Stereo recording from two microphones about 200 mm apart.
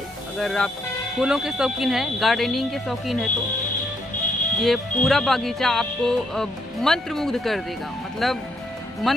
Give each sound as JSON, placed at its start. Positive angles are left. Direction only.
{"t": 0.4, "sound": "speech", "side_deg": 0}
{"t": 4.6, "sound": "speech", "side_deg": 0}